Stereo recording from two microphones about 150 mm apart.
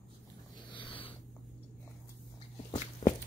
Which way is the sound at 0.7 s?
35° left (ahead or behind).